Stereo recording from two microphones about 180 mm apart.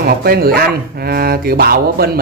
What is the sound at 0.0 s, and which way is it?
Speech, 55° right (ahead or behind).